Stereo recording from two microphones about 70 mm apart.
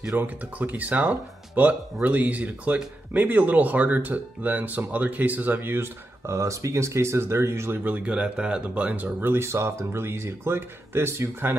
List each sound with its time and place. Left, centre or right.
0.2 s speech: right
7.9 s speech: centre
9.3 s speech: right